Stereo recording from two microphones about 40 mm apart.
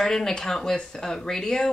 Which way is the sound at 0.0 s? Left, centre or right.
Centre.